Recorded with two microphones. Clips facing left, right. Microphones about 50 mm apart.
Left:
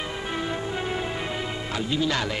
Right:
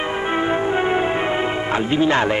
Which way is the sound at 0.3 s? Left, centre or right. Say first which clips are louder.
Right 10 dB; right.